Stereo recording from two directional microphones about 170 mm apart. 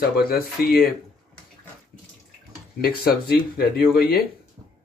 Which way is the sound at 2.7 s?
65° left (ahead or behind).